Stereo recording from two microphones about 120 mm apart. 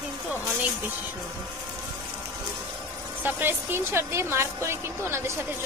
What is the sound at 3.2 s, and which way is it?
A woman's voice, 15° right (ahead or behind).